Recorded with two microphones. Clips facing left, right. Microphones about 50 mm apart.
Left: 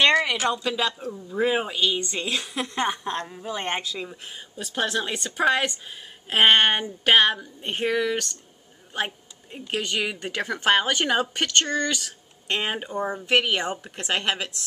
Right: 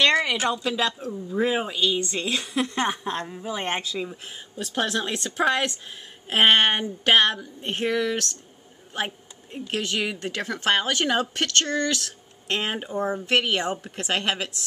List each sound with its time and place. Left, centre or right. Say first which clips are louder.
0.1 s a woman's voice: left 1 dB; centre